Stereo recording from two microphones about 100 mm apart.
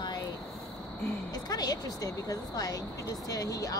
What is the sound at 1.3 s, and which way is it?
Speech, 40° left (ahead or behind).